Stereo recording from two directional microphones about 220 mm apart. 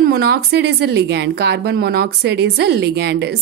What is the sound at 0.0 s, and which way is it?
Speech, 45° right (ahead or behind).